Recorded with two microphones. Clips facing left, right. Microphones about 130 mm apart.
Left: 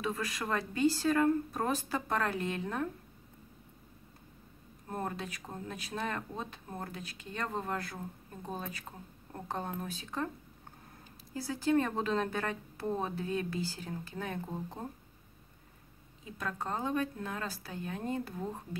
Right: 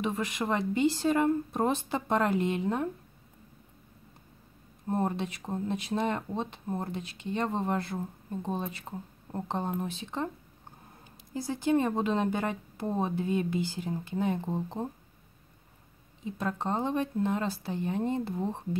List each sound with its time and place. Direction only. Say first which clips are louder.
0.0 s speech: right 5 dB; 20° right (ahead or behind)
4.8 s speech: right 8 dB; 25° right (ahead or behind)
11.3 s speech: right 3 dB; 20° right (ahead or behind)
16.3 s speech: right 5 dB; 25° right (ahead or behind)